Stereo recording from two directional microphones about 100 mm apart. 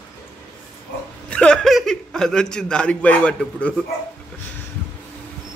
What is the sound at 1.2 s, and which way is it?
A man's voice, 10° left (ahead or behind).